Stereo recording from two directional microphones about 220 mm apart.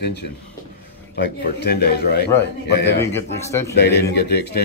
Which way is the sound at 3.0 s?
10° left (ahead or behind).